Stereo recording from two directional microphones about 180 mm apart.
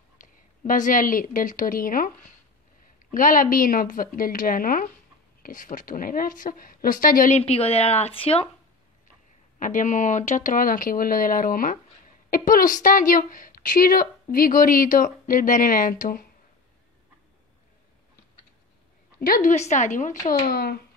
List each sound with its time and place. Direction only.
0.2 s a woman's voice: 45° left (ahead or behind)
9.6 s a woman's voice: 45° left (ahead or behind)
19.1 s a woman's voice: 55° left (ahead or behind)
20.4 s speech: 60° left (ahead or behind)